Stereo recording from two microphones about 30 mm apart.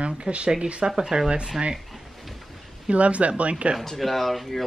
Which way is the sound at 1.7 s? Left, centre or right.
Centre.